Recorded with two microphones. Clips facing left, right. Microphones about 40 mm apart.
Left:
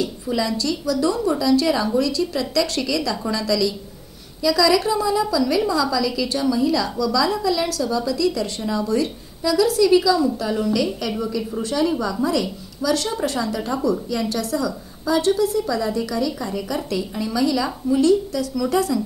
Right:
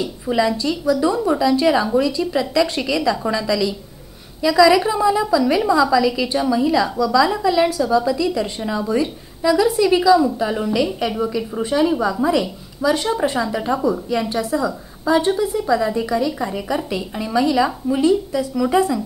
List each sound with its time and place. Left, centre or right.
0.0 s a woman's voice: right